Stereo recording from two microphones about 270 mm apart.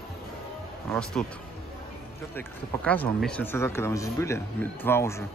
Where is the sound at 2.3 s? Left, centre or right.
Centre.